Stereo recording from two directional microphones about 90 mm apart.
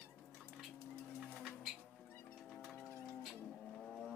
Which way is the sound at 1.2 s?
Centre (ahead or behind).